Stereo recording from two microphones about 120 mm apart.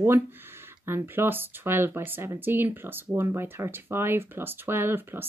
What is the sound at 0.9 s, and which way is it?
Speech, 20° right (ahead or behind).